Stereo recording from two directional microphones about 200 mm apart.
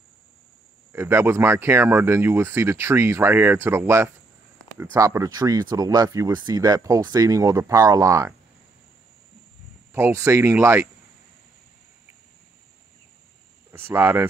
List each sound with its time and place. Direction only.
0.9 s speech: 10° right (ahead or behind)
9.9 s speech: 15° right (ahead or behind)
13.7 s speech: 10° right (ahead or behind)